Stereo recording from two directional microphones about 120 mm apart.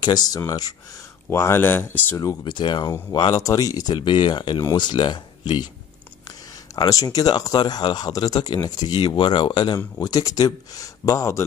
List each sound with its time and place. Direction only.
0.0 s speech: 35° left (ahead or behind); by 2.1 s 15° left (ahead or behind)
2.1 s speech: 35° left (ahead or behind)
6.7 s speech: 30° left (ahead or behind)